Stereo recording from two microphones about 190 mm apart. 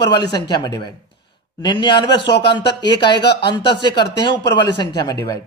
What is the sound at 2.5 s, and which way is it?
Speech, 25° left (ahead or behind).